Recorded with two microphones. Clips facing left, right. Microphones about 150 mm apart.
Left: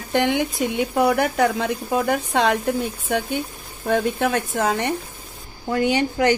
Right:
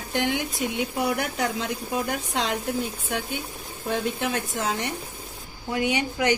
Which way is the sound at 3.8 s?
60° left (ahead or behind).